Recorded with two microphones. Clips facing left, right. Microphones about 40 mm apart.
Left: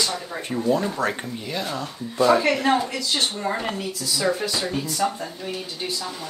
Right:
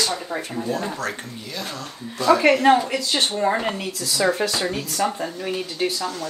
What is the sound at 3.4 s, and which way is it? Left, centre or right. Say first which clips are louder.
Speech: right 4 dB; right.